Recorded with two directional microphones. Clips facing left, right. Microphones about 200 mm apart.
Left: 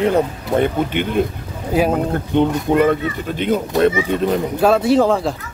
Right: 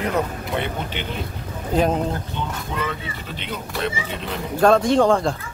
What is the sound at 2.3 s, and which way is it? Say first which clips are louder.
Speech: left 13 dB; 55° left (ahead or behind).